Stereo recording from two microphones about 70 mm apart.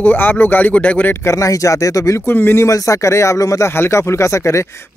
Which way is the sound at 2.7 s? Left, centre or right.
Left.